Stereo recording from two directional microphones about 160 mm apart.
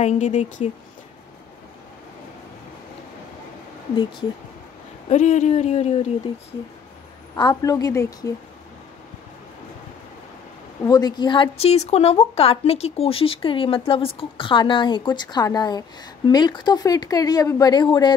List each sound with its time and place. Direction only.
0.0 s speech: 50° left (ahead or behind)
5.1 s speech: 50° left (ahead or behind)
7.3 s speech: 25° left (ahead or behind)
10.9 s speech: 25° left (ahead or behind)